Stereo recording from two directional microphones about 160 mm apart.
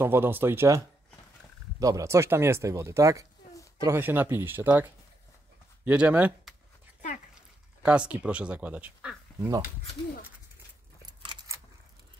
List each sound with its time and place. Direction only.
0.0 s speech: 15° right (ahead or behind)
7.8 s speech: 5° right (ahead or behind)
11.1 s keys jangling: 20° right (ahead or behind)